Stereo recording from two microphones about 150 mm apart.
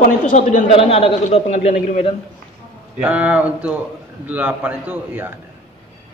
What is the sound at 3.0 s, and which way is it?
A man's voice, 10° right (ahead or behind).